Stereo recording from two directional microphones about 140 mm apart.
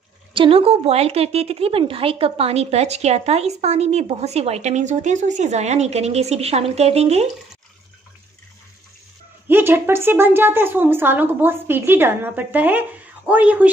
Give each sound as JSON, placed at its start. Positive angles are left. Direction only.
{"t": 0.3, "sound": "a woman's voice", "side_deg": -40}
{"t": 9.5, "sound": "a woman's voice", "side_deg": -15}